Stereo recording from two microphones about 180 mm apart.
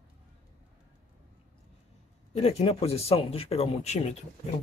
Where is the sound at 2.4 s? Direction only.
35° left (ahead or behind).